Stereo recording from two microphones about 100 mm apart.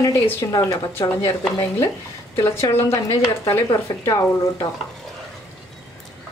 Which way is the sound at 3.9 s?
35° left (ahead or behind).